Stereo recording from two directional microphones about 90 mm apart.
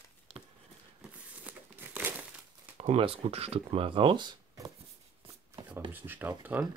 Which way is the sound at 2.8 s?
90° right.